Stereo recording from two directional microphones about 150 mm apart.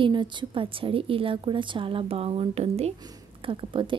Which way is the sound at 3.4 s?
35° right (ahead or behind).